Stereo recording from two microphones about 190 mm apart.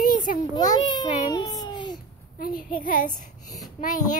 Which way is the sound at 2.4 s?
45° left (ahead or behind).